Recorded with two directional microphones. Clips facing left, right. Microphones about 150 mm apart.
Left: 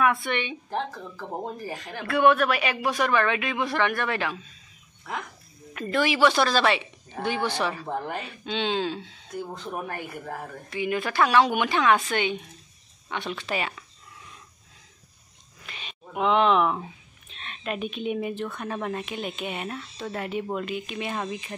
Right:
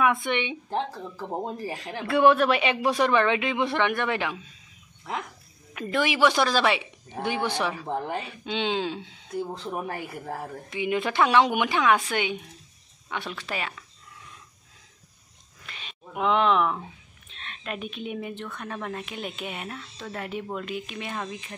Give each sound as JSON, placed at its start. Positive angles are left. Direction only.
{"t": 0.0, "sound": "speech", "side_deg": -15}
{"t": 5.7, "sound": "a woman's voice", "side_deg": -10}
{"t": 15.6, "sound": "a sound", "side_deg": 5}
{"t": 17.4, "sound": "a woman's voice", "side_deg": 5}